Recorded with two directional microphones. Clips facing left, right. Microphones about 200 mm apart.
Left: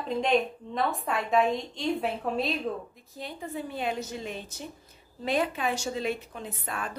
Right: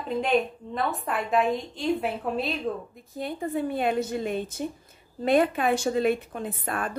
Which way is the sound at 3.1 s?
55° right (ahead or behind).